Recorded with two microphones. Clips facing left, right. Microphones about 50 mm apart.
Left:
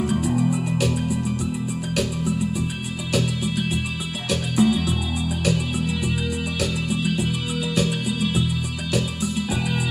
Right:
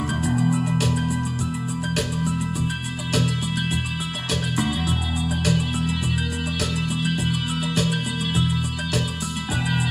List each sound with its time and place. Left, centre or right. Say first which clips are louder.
0.5 s music: even; right
4.6 s music: left 7 dB; right
7.0 s music: left 1 dB; right